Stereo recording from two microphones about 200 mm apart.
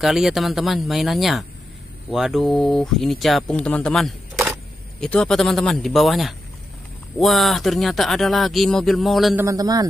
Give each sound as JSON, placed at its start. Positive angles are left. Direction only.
{"t": 0.0, "sound": "speech", "side_deg": 0}
{"t": 9.4, "sound": "a man's voice", "side_deg": -15}